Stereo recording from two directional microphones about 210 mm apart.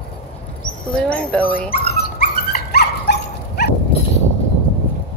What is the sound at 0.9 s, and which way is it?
Speech, 5° left (ahead or behind).